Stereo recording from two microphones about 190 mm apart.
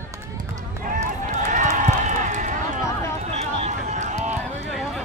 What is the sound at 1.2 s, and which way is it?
Run, 40° right (ahead or behind).